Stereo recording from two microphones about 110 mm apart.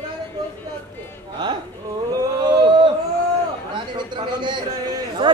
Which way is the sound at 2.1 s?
45° right (ahead or behind).